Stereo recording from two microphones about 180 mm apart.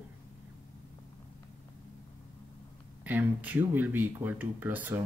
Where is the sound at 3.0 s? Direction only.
10° right (ahead or behind).